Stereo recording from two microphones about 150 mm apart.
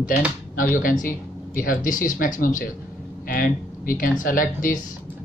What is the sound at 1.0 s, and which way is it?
Speech, 65° left (ahead or behind).